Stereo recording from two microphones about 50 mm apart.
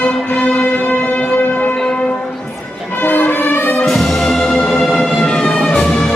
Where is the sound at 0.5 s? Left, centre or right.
Left.